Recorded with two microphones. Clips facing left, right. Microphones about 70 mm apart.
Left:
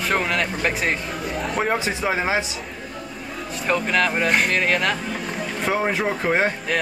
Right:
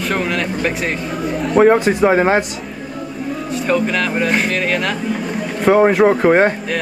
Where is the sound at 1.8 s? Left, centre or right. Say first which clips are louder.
Right 10 dB; right.